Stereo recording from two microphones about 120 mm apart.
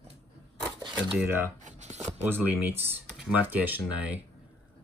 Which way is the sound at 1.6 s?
75° right (ahead or behind).